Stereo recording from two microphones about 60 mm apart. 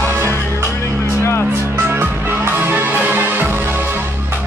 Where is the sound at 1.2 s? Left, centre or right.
Left.